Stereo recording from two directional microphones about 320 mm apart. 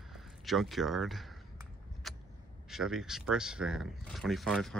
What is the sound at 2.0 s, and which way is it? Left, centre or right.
Vehicle, centre.